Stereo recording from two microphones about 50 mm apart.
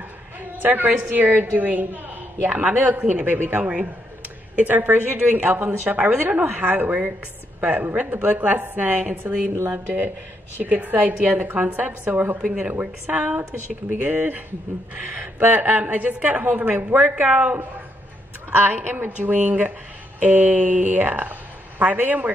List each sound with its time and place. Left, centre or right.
0.6 s a woman's voice: right
3.3 s a woman's voice: right
12.4 s speech: centre
13.1 s a woman's voice: right
17.2 s a woman's voice: right
18.5 s a woman's voice: right